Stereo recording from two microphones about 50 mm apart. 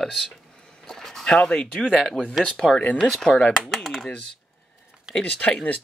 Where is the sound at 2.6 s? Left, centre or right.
Centre.